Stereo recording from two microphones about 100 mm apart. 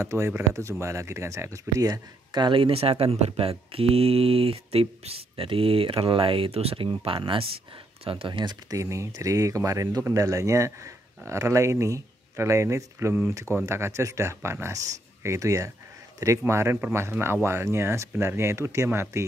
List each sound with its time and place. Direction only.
0.0 s speech: 25° right (ahead or behind); by 8.7 s 50° right (ahead or behind)
8.7 s speech: 30° right (ahead or behind)